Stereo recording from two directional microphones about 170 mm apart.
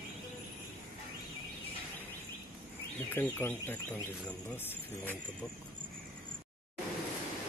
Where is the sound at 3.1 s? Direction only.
10° left (ahead or behind).